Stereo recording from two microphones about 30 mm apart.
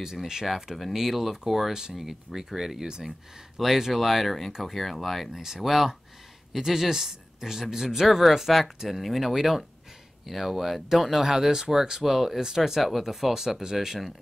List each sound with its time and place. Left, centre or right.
0.9 s speech: centre
1.7 s speech: centre
2.0 s speech: centre
8.1 s speech: centre
12.0 s speech: centre
12.4 s speech: centre
12.8 s speech: centre